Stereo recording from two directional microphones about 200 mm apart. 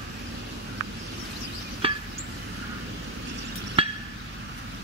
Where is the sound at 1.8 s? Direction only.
25° right (ahead or behind).